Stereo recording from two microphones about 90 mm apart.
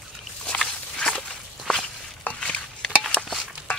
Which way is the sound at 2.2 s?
10° left (ahead or behind).